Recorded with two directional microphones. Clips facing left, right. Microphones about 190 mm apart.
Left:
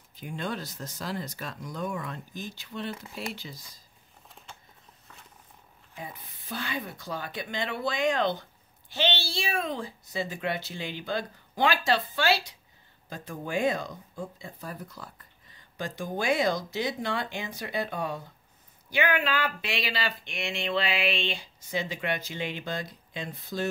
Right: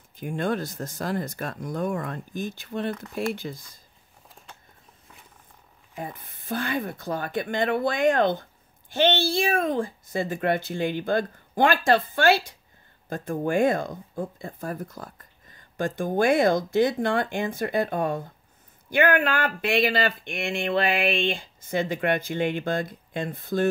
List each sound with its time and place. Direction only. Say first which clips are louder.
0.1 s speech: right 7 dB; 50° right (ahead or behind)
5.9 s speech: right 6 dB; 50° right (ahead or behind)